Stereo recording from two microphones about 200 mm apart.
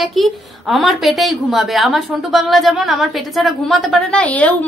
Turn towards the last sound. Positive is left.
turn(degrees=5)  # may be behind; listen again after turning